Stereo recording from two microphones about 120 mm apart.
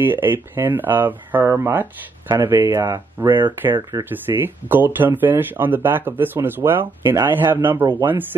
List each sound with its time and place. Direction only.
0.0 s speech: 15° right (ahead or behind)